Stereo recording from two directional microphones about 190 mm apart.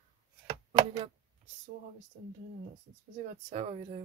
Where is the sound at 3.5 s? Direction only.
35° right (ahead or behind).